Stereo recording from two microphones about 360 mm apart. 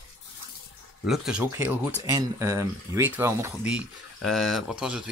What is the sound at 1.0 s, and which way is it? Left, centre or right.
Speech, centre.